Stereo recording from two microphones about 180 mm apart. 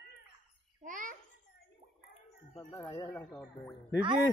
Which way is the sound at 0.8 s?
45° right (ahead or behind).